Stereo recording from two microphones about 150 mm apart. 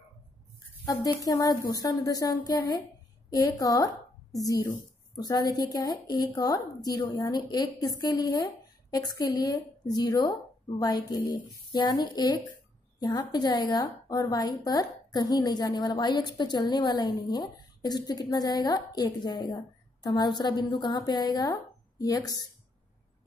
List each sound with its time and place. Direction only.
0.8 s a woman's voice: 25° left (ahead or behind)